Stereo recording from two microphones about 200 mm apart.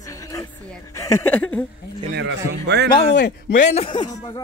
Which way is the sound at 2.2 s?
60° right (ahead or behind).